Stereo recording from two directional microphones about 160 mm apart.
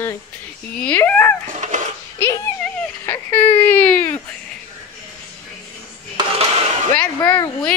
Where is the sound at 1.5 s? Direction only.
45° right (ahead or behind).